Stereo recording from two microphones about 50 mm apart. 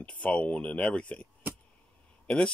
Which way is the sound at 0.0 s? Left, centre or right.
Left.